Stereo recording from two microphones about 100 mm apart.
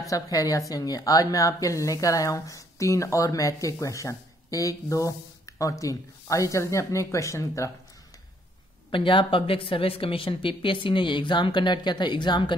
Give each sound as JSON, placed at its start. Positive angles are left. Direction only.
{"t": 0.0, "sound": "speech", "side_deg": 35}
{"t": 8.9, "sound": "a woman's voice", "side_deg": 55}